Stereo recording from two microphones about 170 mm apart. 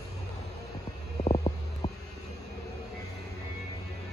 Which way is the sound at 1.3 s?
35° left (ahead or behind).